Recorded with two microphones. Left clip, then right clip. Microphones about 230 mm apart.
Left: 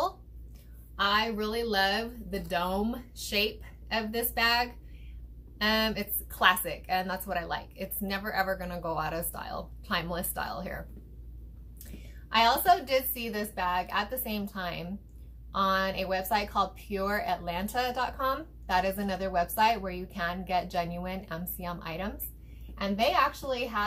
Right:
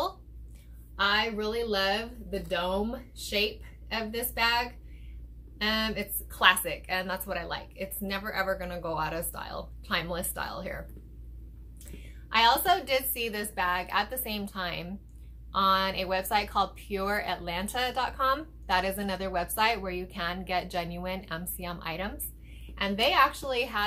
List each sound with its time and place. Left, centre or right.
0.9 s a woman's voice: centre
3.9 s a woman's voice: centre
11.9 s a woman's voice: centre